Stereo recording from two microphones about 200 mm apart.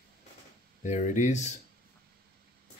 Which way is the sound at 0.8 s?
35° left (ahead or behind).